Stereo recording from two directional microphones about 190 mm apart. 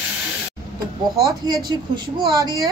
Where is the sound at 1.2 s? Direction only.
20° right (ahead or behind).